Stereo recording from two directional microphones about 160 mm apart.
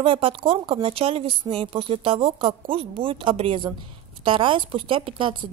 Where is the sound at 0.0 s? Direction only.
35° right (ahead or behind).